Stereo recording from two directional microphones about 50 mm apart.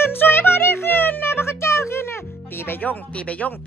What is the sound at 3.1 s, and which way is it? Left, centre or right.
Speech, left.